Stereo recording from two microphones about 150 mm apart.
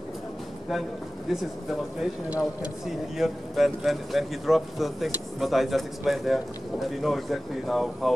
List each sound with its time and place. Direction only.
2.0 s speech: 10° right (ahead or behind)